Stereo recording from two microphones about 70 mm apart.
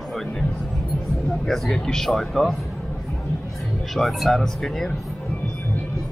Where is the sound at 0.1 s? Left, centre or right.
Centre.